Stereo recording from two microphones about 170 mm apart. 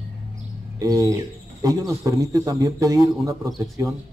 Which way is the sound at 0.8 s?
20° right (ahead or behind).